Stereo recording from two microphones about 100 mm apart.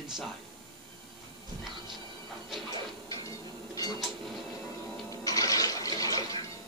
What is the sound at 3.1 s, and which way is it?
Printer, 35° left (ahead or behind).